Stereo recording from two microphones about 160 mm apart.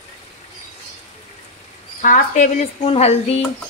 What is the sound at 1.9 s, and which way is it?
Speech, 50° left (ahead or behind).